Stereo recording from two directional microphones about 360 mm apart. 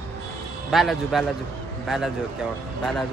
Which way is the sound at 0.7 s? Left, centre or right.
Centre.